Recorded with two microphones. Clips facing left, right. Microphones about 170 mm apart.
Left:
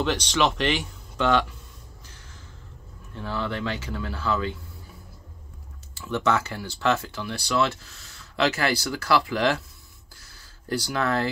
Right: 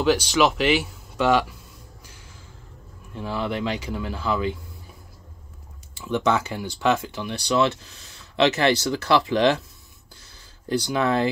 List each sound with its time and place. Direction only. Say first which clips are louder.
0.0 s speech: right 4 dB; 5° right (ahead or behind)
3.2 s speech: right 3 dB; 15° right (ahead or behind)
5.9 s speech: right 2 dB; 15° right (ahead or behind)
10.7 s speech: right 3 dB; 20° right (ahead or behind)